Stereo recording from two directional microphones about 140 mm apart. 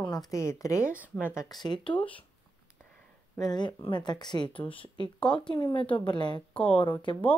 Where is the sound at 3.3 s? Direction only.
25° left (ahead or behind).